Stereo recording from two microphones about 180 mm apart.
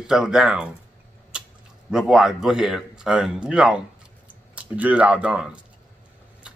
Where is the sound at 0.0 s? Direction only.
5° right (ahead or behind).